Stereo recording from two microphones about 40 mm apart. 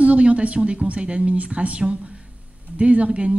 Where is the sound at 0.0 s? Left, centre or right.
Right.